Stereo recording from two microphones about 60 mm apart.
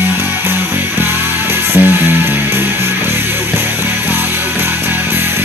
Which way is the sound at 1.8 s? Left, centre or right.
Right.